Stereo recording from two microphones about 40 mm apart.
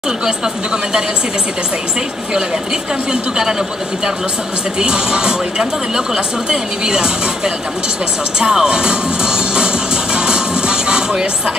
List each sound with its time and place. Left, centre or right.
3.1 s speech: centre
4.7 s speech: centre
8.4 s music: centre